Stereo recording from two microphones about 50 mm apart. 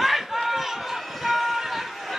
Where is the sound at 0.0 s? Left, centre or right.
Centre.